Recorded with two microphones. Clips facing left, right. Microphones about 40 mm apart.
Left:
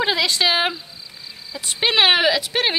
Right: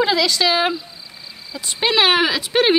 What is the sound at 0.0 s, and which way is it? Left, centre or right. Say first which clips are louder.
Speech: right 2 dB; left.